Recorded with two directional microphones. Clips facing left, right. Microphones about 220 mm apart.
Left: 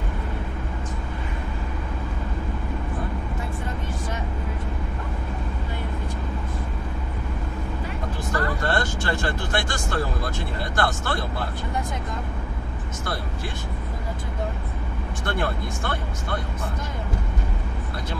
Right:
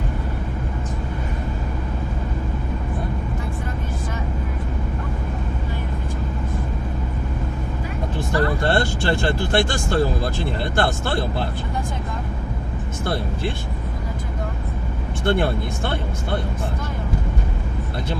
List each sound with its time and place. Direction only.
8.3 s speech: 30° right (ahead or behind)
15.2 s speech: 25° right (ahead or behind)